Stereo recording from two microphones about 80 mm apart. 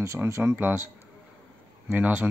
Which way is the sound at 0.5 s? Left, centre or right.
Right.